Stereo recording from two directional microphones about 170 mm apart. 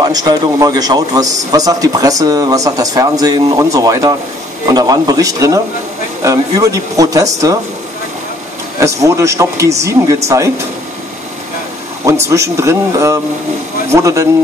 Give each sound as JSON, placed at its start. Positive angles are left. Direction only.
{"t": 0.0, "sound": "a man's voice", "side_deg": -20}
{"t": 8.7, "sound": "speech", "side_deg": -20}
{"t": 12.1, "sound": "a man's voice", "side_deg": -20}